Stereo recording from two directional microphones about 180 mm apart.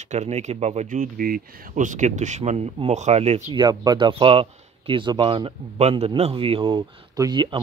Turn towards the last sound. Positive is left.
turn(degrees=-25)  # may be behind; listen again after turning